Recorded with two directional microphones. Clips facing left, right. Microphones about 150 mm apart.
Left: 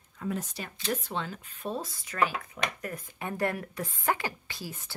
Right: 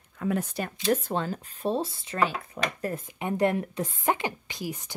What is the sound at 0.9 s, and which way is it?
A woman's voice, 45° right (ahead or behind).